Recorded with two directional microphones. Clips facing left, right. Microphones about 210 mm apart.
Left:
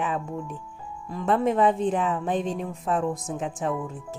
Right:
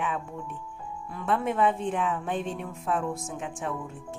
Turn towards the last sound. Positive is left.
turn(degrees=35)  # may be behind; listen again after turning